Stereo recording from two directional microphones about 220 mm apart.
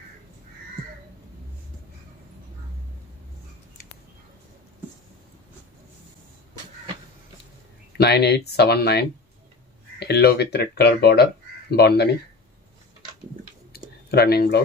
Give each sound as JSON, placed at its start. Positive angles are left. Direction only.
{"t": 8.0, "sound": "speech", "side_deg": 50}
{"t": 13.7, "sound": "clicking", "side_deg": 45}